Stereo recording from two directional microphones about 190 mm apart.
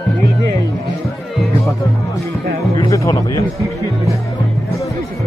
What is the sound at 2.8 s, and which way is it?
Music, 20° left (ahead or behind).